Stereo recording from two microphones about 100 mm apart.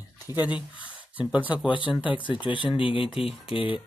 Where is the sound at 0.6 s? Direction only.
55° left (ahead or behind).